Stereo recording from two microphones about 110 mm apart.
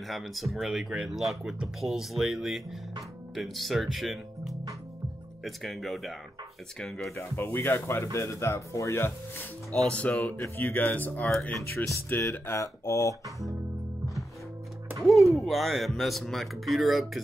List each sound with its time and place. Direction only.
0.1 s speech: centre (ahead or behind)
7.2 s speech: 20° left (ahead or behind)
9.7 s speech: 10° left (ahead or behind)
11.2 s speech: 5° left (ahead or behind)
11.8 s speech: 25° left (ahead or behind)
15.0 s speech: centre (ahead or behind)